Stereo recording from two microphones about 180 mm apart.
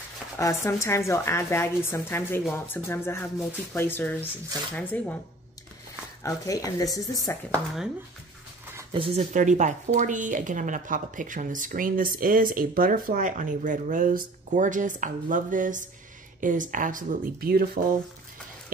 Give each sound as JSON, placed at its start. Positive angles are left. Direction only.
{"t": 0.4, "sound": "a woman's voice", "side_deg": 15}
{"t": 6.2, "sound": "speech", "side_deg": 20}
{"t": 7.5, "sound": "speech", "side_deg": 0}
{"t": 8.9, "sound": "speech", "side_deg": -30}
{"t": 9.3, "sound": "speech", "side_deg": -45}